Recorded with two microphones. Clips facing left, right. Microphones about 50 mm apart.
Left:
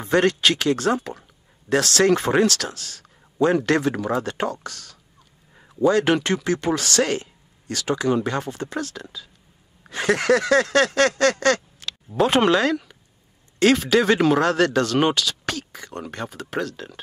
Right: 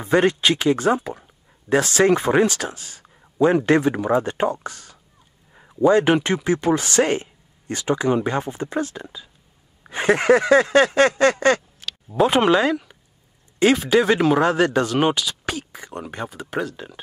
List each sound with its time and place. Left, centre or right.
0.0 s speech: centre
5.5 s a sound: centre
5.9 s speech: centre
12.1 s speech: centre